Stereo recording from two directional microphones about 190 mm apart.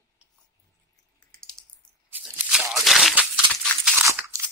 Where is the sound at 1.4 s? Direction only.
5° left (ahead or behind).